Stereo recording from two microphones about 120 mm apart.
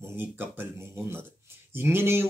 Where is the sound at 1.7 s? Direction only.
20° right (ahead or behind).